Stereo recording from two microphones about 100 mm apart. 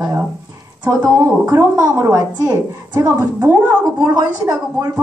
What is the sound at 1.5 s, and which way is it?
A woman's voice, 35° right (ahead or behind).